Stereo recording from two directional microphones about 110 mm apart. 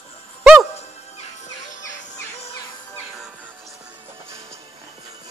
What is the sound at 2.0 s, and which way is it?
Music, 70° left (ahead or behind).